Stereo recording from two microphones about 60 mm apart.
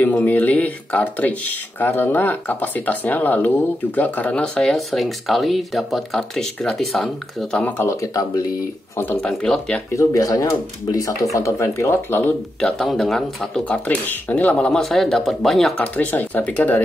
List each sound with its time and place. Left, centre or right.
0.2 s speech: left
4.6 s speech: centre
8.0 s speech: left
9.1 s speech: centre
9.9 s speech: left
11.3 s speech: left
12.5 s speech: centre
13.7 s speech: left
14.7 s speech: centre
15.8 s speech: left